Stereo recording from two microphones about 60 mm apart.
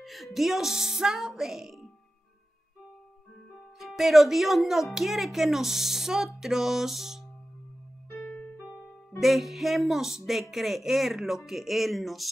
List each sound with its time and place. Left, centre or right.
0.0 s speech: centre
3.8 s speech: centre
8.3 s music: left
9.2 s speech: centre